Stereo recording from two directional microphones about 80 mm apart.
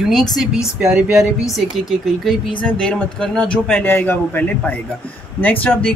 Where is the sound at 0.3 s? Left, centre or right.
Centre.